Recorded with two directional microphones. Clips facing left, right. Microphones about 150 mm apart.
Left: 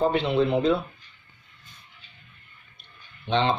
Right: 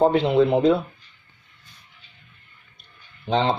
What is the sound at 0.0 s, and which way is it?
Speech, 75° right (ahead or behind).